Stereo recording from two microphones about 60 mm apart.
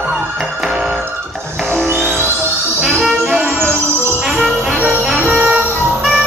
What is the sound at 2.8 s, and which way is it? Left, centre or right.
Music, centre.